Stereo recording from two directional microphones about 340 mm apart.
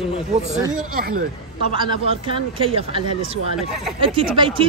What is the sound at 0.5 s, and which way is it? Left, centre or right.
Speech, right.